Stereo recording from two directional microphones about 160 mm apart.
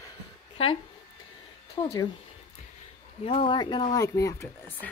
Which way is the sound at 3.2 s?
35° left (ahead or behind).